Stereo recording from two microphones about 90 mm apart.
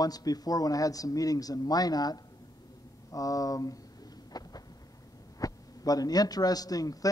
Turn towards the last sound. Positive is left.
turn(degrees=40)  # may be behind; listen again after turning